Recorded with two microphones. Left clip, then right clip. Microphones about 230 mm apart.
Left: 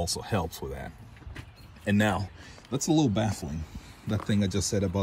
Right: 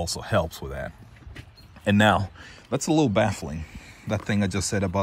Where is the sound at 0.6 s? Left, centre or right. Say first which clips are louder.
Right 4 dB; right.